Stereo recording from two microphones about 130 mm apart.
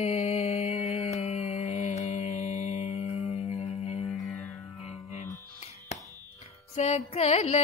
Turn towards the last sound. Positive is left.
turn(degrees=50)  # may be behind; listen again after turning